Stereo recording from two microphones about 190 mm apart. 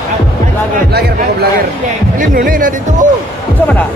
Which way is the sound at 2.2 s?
45° right (ahead or behind).